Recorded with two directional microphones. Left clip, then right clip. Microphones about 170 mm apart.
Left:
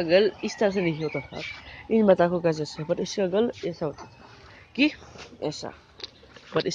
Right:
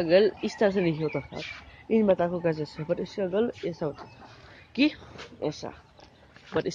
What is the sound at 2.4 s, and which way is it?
Speech, 15° left (ahead or behind).